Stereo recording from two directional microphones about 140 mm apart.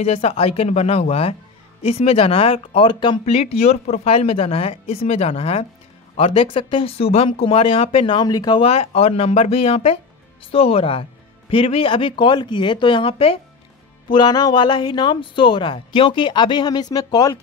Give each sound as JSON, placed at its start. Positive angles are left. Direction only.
{"t": 0.0, "sound": "a woman's voice", "side_deg": 45}
{"t": 8.6, "sound": "a woman's voice", "side_deg": 45}